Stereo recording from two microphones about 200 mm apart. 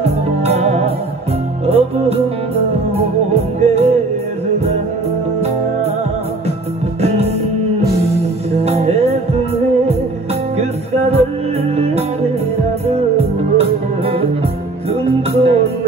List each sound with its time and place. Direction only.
0.0 s music: 30° right (ahead or behind)
7.0 s music: 30° right (ahead or behind)
8.6 s music: 30° right (ahead or behind)
10.6 s music: 30° right (ahead or behind)